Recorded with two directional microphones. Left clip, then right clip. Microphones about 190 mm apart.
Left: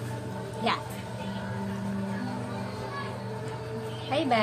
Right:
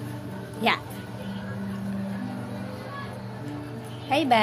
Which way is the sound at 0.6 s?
40° right (ahead or behind).